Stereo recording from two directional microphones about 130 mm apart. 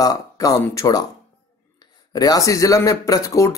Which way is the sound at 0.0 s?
30° left (ahead or behind).